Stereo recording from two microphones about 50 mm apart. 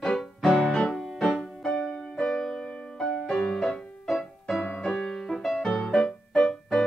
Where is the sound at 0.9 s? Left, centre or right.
Centre.